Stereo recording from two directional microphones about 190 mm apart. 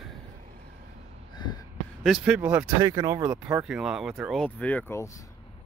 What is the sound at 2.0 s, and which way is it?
Speech, 5° right (ahead or behind).